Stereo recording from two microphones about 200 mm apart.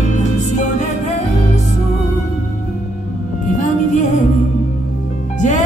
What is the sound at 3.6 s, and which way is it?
Music, 35° left (ahead or behind).